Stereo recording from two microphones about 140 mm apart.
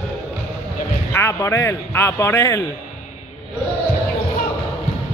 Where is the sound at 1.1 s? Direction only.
20° left (ahead or behind).